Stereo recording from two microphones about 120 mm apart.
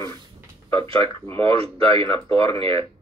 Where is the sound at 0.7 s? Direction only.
50° right (ahead or behind).